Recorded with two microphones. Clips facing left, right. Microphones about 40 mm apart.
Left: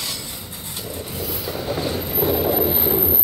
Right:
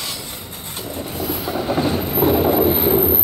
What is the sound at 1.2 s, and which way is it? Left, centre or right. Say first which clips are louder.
Train: right 5 dB; right.